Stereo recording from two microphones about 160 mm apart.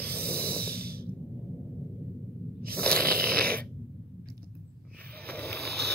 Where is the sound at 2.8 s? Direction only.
5° left (ahead or behind).